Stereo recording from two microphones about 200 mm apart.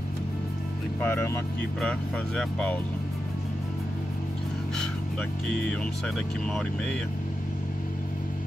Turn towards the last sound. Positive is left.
turn(degrees=5)  # may be behind; listen again after turning